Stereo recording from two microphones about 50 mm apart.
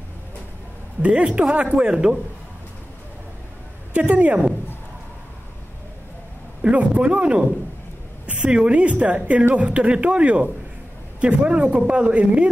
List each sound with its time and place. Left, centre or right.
1.0 s a woman's voice: right
4.1 s a woman's voice: right
6.6 s a woman's voice: right